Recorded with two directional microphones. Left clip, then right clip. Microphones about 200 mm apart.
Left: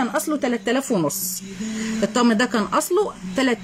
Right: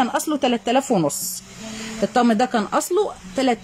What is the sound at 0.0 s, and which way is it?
Speech, centre (ahead or behind).